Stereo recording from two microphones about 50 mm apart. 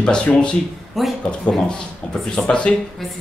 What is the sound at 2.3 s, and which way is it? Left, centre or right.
Speech, centre.